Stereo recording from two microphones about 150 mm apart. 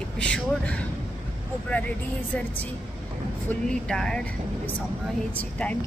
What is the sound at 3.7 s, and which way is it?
Speech, 5° left (ahead or behind).